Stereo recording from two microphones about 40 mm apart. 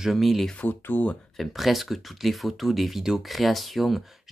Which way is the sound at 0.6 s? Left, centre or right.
Left.